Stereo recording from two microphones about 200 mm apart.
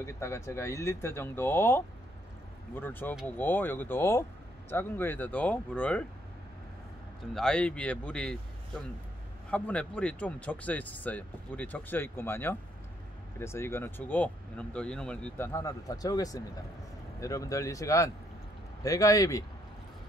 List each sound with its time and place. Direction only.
0.0 s speech: 15° left (ahead or behind)
7.3 s speech: 5° left (ahead or behind)
9.5 s speech: 5° left (ahead or behind)